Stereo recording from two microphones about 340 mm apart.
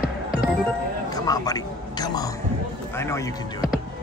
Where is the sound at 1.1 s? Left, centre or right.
Centre.